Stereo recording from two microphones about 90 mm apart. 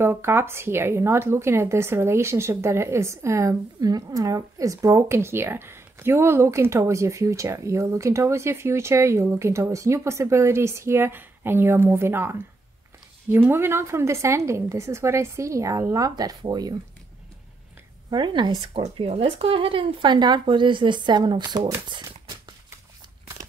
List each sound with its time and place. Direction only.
0.0 s a woman's voice: 25° right (ahead or behind); by 16.7 s 45° right (ahead or behind)
18.1 s speech: 60° right (ahead or behind)
18.6 s speech: 90° right; by 21.7 s 50° right (ahead or behind)